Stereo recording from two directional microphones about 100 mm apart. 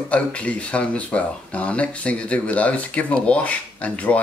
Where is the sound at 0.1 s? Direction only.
10° left (ahead or behind).